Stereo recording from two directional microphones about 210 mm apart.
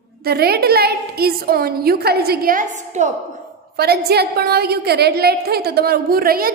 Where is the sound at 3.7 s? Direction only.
50° right (ahead or behind).